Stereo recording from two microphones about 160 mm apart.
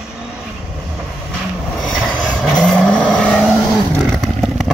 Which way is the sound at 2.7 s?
5° left (ahead or behind).